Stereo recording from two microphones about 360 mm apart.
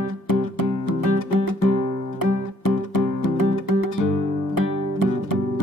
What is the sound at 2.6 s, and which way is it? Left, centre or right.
Music, left.